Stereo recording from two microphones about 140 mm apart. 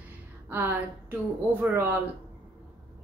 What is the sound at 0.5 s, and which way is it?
A woman's voice, 15° right (ahead or behind).